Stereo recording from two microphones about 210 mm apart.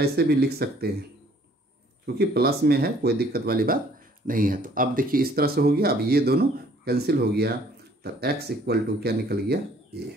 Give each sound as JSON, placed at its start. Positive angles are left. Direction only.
{"t": 0.0, "sound": "speech", "side_deg": -50}
{"t": 2.1, "sound": "speech", "side_deg": -50}